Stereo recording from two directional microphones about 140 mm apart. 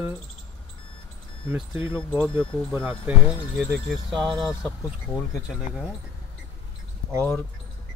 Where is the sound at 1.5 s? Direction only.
15° right (ahead or behind).